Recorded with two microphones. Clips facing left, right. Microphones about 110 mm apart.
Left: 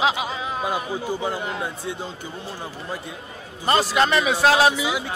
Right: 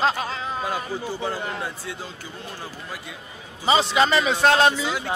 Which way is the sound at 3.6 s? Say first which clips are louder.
Even; centre (ahead or behind).